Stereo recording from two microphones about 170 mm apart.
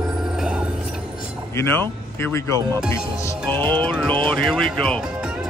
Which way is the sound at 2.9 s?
15° left (ahead or behind).